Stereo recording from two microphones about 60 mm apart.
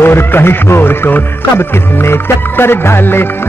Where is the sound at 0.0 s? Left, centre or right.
Left.